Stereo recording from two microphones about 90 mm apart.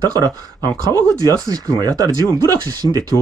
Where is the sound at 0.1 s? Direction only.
45° right (ahead or behind).